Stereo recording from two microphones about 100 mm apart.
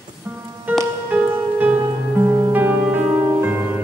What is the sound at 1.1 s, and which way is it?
Music, 15° right (ahead or behind).